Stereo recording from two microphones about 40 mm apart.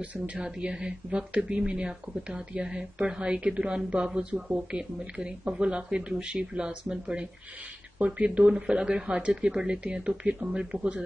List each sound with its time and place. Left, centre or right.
0.0 s speech: right
0.4 s a woman's voice: right